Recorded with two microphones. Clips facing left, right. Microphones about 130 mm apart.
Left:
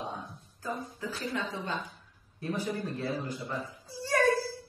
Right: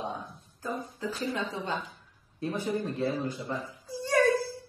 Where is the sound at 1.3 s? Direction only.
25° right (ahead or behind).